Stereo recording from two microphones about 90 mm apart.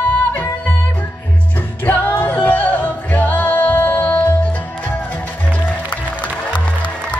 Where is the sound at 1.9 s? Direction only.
20° left (ahead or behind).